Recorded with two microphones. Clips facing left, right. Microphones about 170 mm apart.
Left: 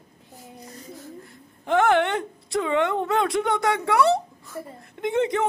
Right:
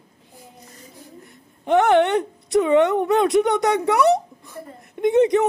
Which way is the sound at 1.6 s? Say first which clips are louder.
Right 4 dB; 20° right (ahead or behind).